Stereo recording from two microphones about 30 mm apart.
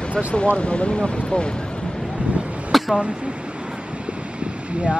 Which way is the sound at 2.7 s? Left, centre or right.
Centre.